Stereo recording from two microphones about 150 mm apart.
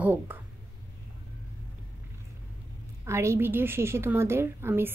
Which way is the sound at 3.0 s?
20° right (ahead or behind).